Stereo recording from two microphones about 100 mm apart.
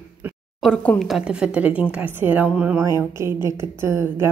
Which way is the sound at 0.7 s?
15° left (ahead or behind).